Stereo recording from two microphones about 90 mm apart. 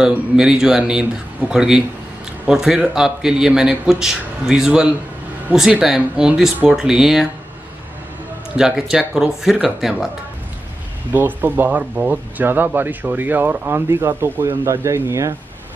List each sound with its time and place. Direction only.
0.0 s speech: 5° right (ahead or behind)
8.5 s speech: 5° right (ahead or behind)
11.1 s speech: 20° right (ahead or behind)